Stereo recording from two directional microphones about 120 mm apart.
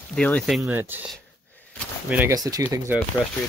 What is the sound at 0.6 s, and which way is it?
Speech, 20° right (ahead or behind).